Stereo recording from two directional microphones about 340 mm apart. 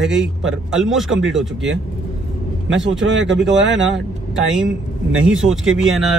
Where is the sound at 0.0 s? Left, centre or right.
Right.